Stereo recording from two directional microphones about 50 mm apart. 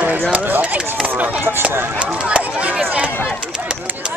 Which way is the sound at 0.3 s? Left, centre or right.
Right.